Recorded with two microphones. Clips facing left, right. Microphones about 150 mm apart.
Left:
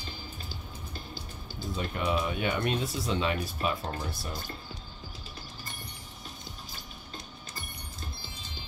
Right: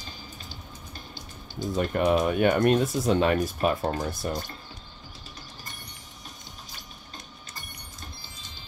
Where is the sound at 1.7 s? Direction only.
50° right (ahead or behind).